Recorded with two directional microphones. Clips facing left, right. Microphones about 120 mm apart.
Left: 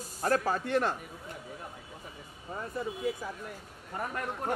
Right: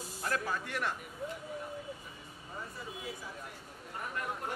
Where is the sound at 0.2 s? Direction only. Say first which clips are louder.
Left 7 dB; 40° left (ahead or behind).